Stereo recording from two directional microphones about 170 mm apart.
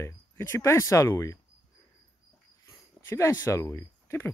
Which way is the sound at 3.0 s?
15° left (ahead or behind).